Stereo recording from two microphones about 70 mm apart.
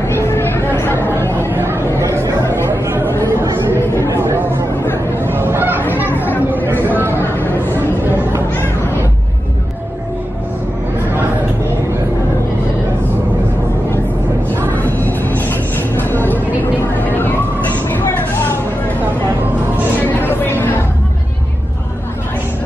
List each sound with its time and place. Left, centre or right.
0.0 s a sound: left
1.1 s chatter: left
1.5 s chatter: right
3.7 s chatter: left
4.0 s chatter: right
4.8 s chatter: left
5.3 s fowl: right
6.0 s chatter: left
6.5 s chatter: right
7.2 s a sound: left
14.7 s music: left
16.0 s a sound: left
20.0 s chatter: left